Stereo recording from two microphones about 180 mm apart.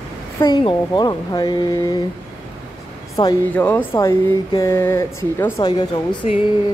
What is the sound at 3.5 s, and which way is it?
Speech, 10° left (ahead or behind).